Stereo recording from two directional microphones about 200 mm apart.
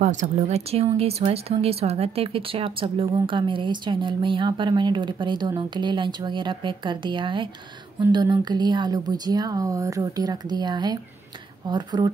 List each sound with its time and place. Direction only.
0.0 s speech: 40° right (ahead or behind); by 12.1 s 20° right (ahead or behind)